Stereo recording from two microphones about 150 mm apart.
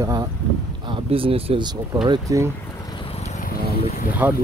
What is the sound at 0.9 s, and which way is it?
Speech, 35° right (ahead or behind).